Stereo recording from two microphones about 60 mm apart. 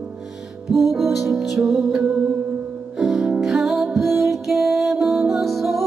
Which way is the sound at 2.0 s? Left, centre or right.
Right.